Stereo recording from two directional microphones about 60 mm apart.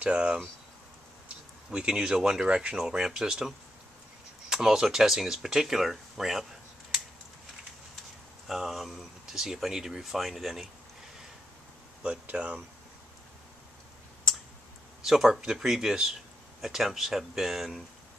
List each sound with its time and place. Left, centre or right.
0.0 s speech: centre
1.7 s speech: centre
8.5 s speech: centre
12.0 s speech: centre
15.0 s speech: centre